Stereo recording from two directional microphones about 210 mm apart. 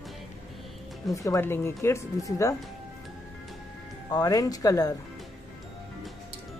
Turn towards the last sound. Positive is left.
turn(degrees=15)  # may be behind; listen again after turning